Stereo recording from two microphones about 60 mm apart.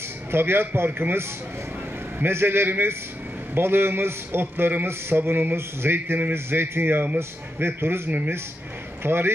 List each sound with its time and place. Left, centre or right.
0.3 s a man's voice: right
6.3 s a man's voice: right